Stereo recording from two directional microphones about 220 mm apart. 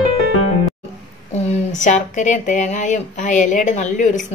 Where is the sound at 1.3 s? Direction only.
30° left (ahead or behind).